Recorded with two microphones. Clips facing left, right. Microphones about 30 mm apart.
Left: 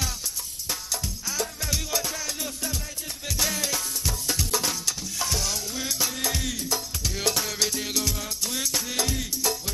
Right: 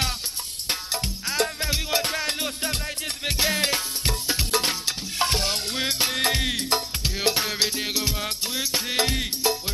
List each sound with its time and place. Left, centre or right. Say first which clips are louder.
1.6 s music: right 4 dB; right
7.2 s music: right 3 dB; right